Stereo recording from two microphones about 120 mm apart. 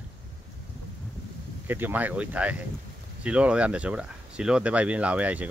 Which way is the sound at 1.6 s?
15° right (ahead or behind).